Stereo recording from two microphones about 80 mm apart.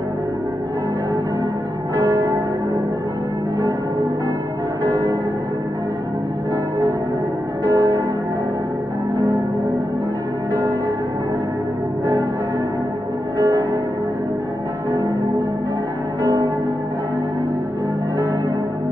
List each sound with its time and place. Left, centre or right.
2.0 s church bell: right
4.8 s church bell: right
7.6 s music: right
13.4 s music: right